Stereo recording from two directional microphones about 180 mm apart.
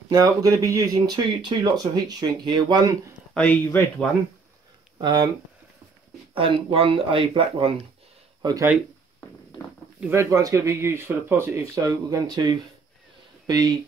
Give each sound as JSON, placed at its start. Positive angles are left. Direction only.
{"t": 0.1, "sound": "speech", "side_deg": -20}
{"t": 3.3, "sound": "speech", "side_deg": 10}
{"t": 5.0, "sound": "speech", "side_deg": -20}
{"t": 6.3, "sound": "speech", "side_deg": -30}
{"t": 9.9, "sound": "speech", "side_deg": -10}